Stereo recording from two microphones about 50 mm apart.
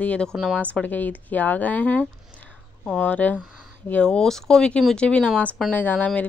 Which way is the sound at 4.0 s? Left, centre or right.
Centre.